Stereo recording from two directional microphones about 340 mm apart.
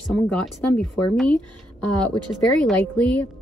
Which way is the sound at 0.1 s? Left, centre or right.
Centre.